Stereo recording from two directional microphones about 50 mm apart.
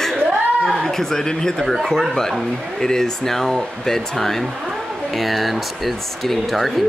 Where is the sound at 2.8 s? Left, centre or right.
Centre.